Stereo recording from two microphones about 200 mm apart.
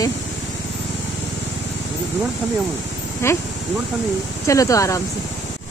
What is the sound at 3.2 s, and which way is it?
Speech, 15° left (ahead or behind).